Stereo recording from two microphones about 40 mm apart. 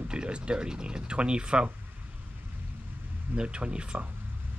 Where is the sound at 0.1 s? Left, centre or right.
Right.